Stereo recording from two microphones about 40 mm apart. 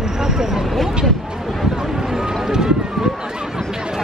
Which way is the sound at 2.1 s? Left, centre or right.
Centre.